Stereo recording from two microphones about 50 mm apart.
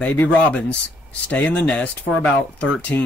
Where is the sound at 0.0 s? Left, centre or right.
Left.